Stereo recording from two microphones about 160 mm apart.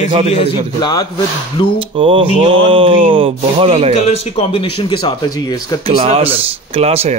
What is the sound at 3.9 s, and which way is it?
Speech, 45° left (ahead or behind).